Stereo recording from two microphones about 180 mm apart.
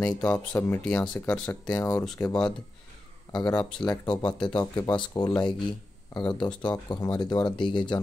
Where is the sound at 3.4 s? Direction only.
20° left (ahead or behind).